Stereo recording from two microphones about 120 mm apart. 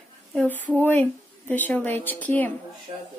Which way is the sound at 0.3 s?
15° left (ahead or behind).